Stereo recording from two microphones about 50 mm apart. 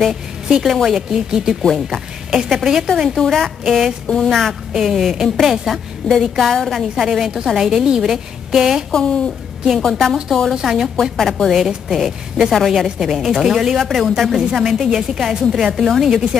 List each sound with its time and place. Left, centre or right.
0.1 s a woman's voice: centre
2.9 s a woman's voice: centre
4.1 s a woman's voice: centre
4.7 s a woman's voice: centre
6.8 s a woman's voice: centre
8.9 s a woman's voice: centre
10.5 s a woman's voice: centre
11.0 s a woman's voice: centre
11.5 s a woman's voice: centre